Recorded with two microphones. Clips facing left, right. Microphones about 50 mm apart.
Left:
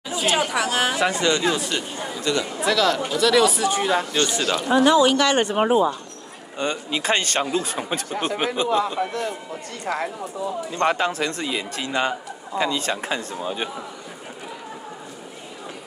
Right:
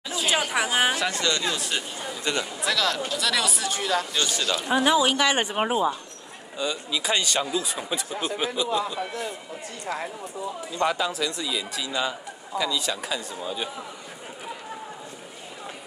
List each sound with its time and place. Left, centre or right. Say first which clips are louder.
0.3 s speech: left 2 dB; centre
0.9 s speech: left 5 dB; left
1.6 s speech: left 3 dB; centre
2.3 s speech: left 4 dB; right
2.6 s speech: left 6 dB; centre
3.7 s speech: left 5 dB; left
4.6 s speech: left 5 dB; centre
6.6 s a man's voice: left 3 dB; left
9.9 s speech: left 5 dB; left
10.8 s a man's voice: left 3 dB; left